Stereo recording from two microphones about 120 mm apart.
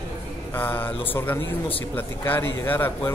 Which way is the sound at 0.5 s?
15° left (ahead or behind).